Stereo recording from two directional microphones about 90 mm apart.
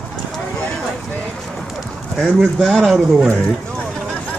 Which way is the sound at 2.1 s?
5° left (ahead or behind).